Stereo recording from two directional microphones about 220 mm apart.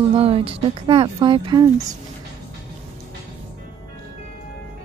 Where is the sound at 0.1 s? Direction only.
25° right (ahead or behind).